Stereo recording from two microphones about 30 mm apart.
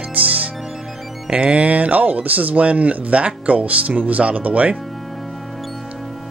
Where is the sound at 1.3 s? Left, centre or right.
Right.